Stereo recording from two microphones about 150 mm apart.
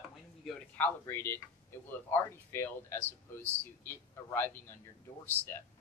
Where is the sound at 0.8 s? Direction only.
15° left (ahead or behind).